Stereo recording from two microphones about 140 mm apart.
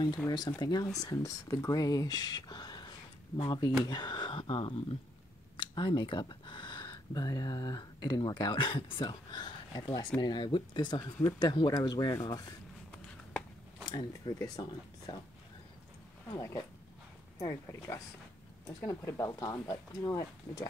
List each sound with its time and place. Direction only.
0.6 s speech: 30° left (ahead or behind)
13.8 s speech: 25° left (ahead or behind)
17.4 s speech: 25° left (ahead or behind)